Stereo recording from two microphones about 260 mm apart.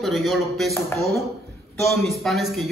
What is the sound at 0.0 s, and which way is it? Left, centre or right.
A man's voice, centre.